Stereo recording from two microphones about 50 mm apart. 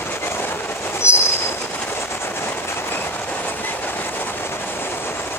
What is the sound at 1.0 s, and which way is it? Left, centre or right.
Vehicle, left.